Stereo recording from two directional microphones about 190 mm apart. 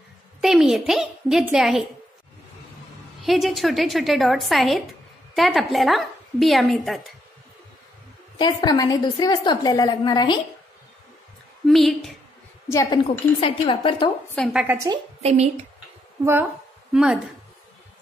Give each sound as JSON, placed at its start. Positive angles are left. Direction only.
{"t": 0.4, "sound": "a woman's voice", "side_deg": 0}
{"t": 3.3, "sound": "a woman's voice", "side_deg": 0}
{"t": 8.4, "sound": "a woman's voice", "side_deg": 25}
{"t": 11.6, "sound": "a woman's voice", "side_deg": 0}
{"t": 12.6, "sound": "a woman's voice", "side_deg": 15}
{"t": 13.4, "sound": "a woman's voice", "side_deg": 25}
{"t": 14.3, "sound": "a woman's voice", "side_deg": 0}
{"t": 15.2, "sound": "a woman's voice", "side_deg": -35}
{"t": 16.9, "sound": "a woman's voice", "side_deg": -5}